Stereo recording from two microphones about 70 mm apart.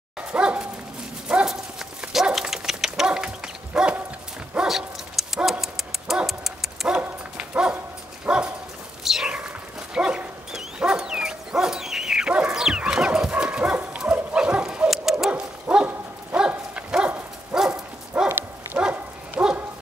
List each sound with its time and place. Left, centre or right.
0.2 s dog: centre
1.3 s horse: centre
2.1 s dog: centre
6.9 s dog: centre
9.0 s a sound: centre
9.9 s dog: centre
18.1 s clip-clop: centre
18.8 s bow-wow: centre